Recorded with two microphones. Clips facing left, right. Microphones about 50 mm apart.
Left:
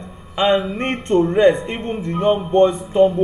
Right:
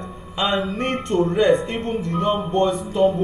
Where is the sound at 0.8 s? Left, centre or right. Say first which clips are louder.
Left 2 dB; left.